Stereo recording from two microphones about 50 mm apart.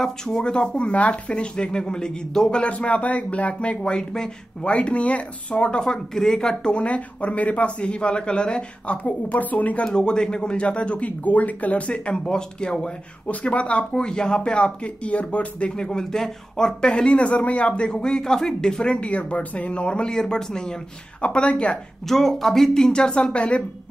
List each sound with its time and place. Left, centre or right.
0.0 s speech: centre
2.6 s speech: left
4.6 s speech: left
9.8 s speech: centre
13.9 s speech: centre
21.2 s speech: left
22.0 s speech: centre; by 23.6 s left